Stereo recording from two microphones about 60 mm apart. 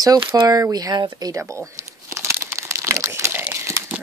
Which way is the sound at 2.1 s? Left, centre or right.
Right.